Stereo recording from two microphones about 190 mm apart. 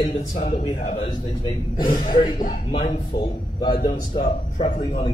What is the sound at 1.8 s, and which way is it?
Speech, 45° left (ahead or behind).